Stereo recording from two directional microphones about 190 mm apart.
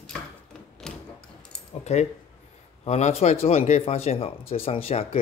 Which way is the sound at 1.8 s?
35° left (ahead or behind).